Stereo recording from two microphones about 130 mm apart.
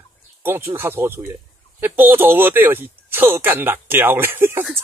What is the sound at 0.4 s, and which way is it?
Speech, 15° right (ahead or behind).